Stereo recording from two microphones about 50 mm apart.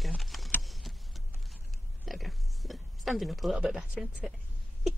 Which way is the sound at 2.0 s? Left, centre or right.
Centre.